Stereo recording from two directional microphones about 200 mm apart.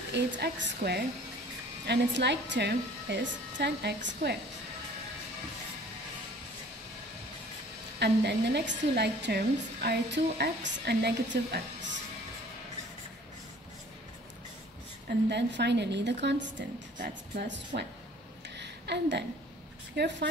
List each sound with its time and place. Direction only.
0.1 s a woman's voice: 55° right (ahead or behind)
8.0 s a woman's voice: 55° right (ahead or behind)
15.0 s a woman's voice: 60° right (ahead or behind)
18.6 s a sound: 60° right (ahead or behind)
20.0 s a woman's voice: 55° right (ahead or behind)